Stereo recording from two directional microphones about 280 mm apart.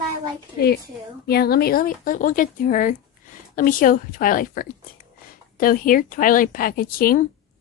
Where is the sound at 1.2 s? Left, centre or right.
Left.